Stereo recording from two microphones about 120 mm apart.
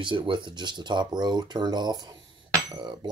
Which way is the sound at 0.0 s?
40° right (ahead or behind).